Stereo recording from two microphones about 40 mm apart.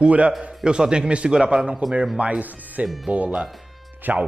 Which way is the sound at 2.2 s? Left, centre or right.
Right.